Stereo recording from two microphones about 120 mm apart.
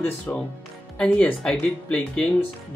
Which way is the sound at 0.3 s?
20° left (ahead or behind).